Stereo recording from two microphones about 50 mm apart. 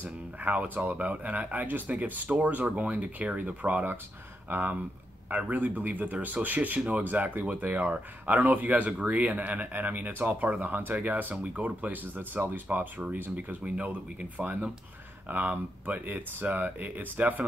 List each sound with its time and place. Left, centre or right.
0.0 s speech: right
13.7 s speech: right
15.2 s speech: right